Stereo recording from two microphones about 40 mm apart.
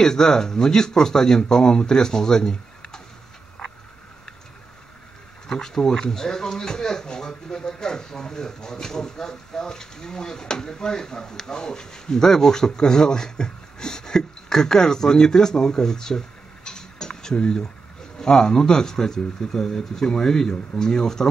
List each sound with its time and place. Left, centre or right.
0.0 s speech: centre
3.6 s frog: centre
5.5 s speech: centre